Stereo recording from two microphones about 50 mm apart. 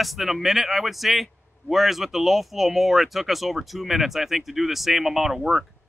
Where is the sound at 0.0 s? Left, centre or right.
Centre.